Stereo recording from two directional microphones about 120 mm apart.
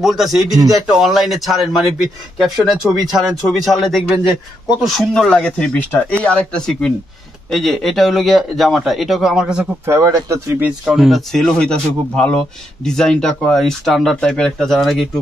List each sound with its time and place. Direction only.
0.0 s speech: centre (ahead or behind)
9.8 s speech: 25° right (ahead or behind)
10.9 s speech: centre (ahead or behind)